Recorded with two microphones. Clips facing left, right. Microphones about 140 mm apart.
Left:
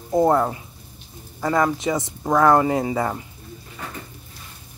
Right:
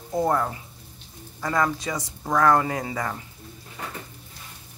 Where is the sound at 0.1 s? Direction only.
25° left (ahead or behind).